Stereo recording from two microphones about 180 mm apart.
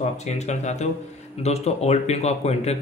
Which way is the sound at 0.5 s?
40° left (ahead or behind).